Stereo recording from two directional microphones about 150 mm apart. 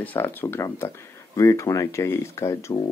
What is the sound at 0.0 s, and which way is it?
Speech, 15° left (ahead or behind).